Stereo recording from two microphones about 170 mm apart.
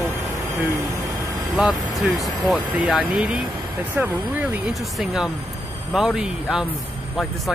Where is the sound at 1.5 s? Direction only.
Centre (ahead or behind).